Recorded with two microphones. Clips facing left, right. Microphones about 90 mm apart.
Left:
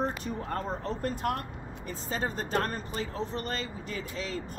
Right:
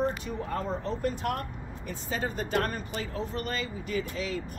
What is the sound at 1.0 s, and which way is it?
Speech, 40° left (ahead or behind).